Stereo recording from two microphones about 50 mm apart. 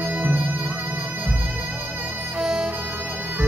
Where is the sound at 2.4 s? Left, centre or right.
Centre.